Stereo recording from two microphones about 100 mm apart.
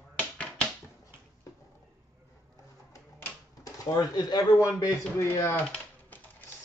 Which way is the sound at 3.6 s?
40° left (ahead or behind).